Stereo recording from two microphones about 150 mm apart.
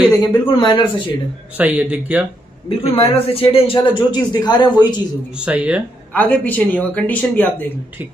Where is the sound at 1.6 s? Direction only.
10° right (ahead or behind).